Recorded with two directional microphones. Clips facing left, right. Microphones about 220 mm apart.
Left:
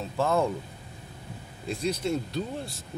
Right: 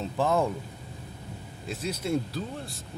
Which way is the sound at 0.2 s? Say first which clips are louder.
Even; 15° right (ahead or behind).